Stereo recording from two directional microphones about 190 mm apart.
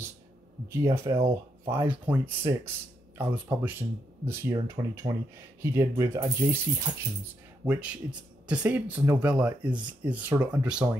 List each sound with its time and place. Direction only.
0.7 s speech: 15° right (ahead or behind)
1.1 s speech: 30° right (ahead or behind)
1.7 s speech: 10° right (ahead or behind)
7.6 s speech: 5° right (ahead or behind)